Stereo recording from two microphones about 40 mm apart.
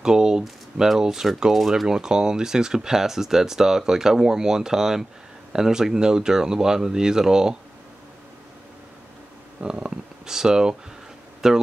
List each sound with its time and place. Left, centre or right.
0.0 s speech: centre
1.5 s speech: centre
1.9 s speech: centre
9.6 s speech: centre